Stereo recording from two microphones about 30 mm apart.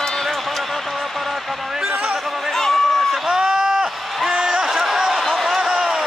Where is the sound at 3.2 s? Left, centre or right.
Centre.